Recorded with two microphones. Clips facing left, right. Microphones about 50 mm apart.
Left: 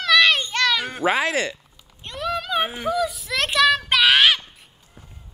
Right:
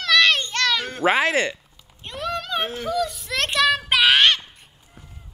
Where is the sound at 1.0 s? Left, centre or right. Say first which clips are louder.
Right 2 dB; centre.